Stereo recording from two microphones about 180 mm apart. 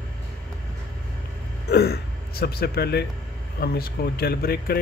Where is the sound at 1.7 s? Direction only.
60° left (ahead or behind).